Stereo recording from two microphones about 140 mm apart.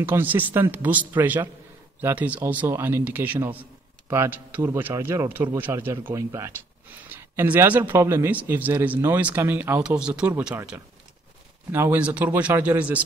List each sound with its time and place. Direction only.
0.0 s speech: 15° right (ahead or behind)